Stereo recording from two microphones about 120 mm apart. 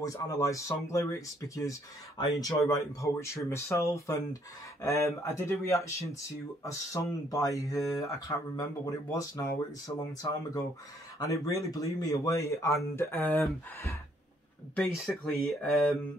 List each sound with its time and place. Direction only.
0.0 s speech: 30° left (ahead or behind)
14.8 s speech: centre (ahead or behind)